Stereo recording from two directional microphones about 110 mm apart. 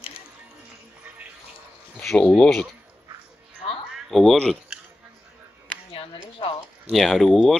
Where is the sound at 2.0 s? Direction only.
5° left (ahead or behind).